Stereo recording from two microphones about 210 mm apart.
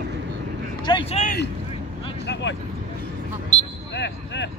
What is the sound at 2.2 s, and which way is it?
Vehicle, 55° left (ahead or behind).